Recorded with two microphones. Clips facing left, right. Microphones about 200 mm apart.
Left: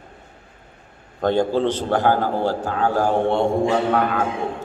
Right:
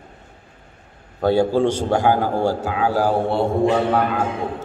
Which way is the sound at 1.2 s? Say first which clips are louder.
Right 2 dB; 10° right (ahead or behind).